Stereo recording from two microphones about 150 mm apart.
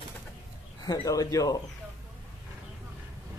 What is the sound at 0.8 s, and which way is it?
Speech, 25° left (ahead or behind).